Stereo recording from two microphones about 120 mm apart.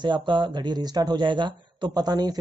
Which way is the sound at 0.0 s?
40° right (ahead or behind).